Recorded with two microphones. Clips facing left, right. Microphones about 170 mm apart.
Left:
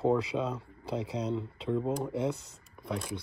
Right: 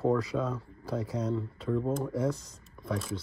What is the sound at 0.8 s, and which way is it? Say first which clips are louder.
Speech: right 1 dB; 70° left (ahead or behind).